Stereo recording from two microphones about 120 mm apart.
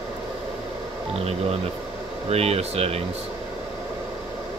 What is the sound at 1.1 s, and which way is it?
Speech, 60° right (ahead or behind).